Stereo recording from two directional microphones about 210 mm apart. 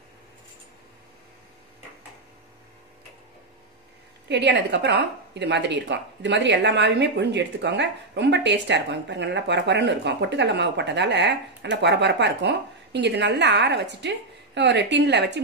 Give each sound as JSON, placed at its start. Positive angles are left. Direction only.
{"t": 4.3, "sound": "a woman's voice", "side_deg": -55}